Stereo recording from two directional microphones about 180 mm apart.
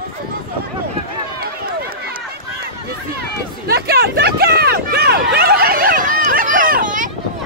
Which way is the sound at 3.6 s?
60° right (ahead or behind).